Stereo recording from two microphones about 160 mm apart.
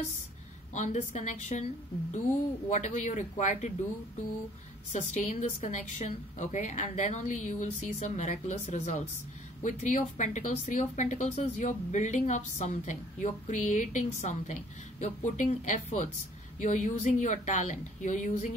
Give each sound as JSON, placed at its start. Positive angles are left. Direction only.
{"t": 0.7, "sound": "a woman's voice", "side_deg": 50}
{"t": 2.7, "sound": "a woman's voice", "side_deg": 50}
{"t": 4.9, "sound": "a woman's voice", "side_deg": 45}